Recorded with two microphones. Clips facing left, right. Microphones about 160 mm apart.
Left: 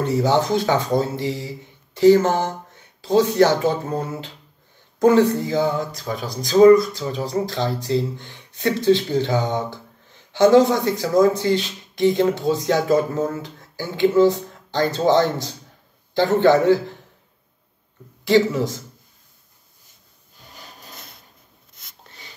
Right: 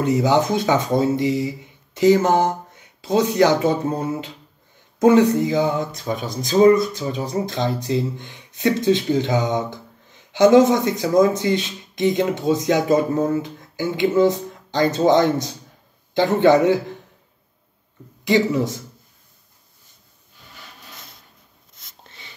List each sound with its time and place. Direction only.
0.0 s speech: 15° right (ahead or behind)
18.2 s speech: 15° right (ahead or behind)